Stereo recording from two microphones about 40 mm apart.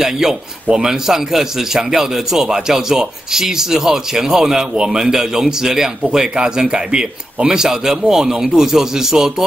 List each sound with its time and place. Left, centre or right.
0.0 s a man's voice: centre